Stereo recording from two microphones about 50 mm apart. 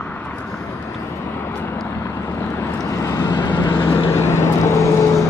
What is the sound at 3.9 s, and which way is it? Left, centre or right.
Vehicle, left.